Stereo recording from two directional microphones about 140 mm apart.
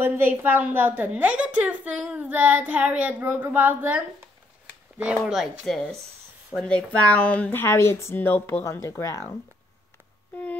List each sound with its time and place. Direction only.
0.0 s a woman's voice: 15° right (ahead or behind); by 9.4 s 20° left (ahead or behind)